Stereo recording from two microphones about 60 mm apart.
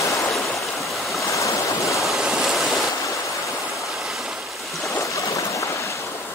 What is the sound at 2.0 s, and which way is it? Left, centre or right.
Waves, centre.